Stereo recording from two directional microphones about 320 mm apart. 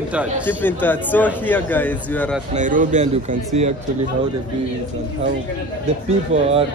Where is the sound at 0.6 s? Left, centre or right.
Centre.